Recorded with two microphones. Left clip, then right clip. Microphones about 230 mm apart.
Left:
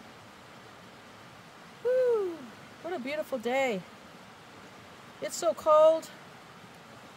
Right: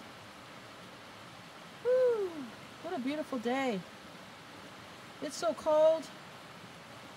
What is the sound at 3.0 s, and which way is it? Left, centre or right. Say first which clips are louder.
Speech: left 3 dB; left.